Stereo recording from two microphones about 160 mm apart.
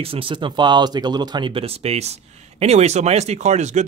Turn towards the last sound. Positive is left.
turn(degrees=-45)  # may be behind; listen again after turning